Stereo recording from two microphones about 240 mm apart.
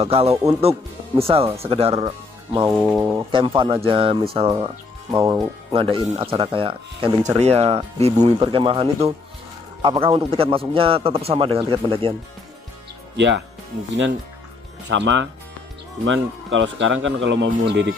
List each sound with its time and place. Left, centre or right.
0.0 s speech: right
2.7 s speech: centre
3.3 s speech: right
13.1 s speech: right
15.0 s speech: right